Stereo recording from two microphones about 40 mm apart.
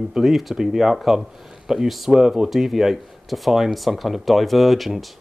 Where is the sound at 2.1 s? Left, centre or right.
Centre.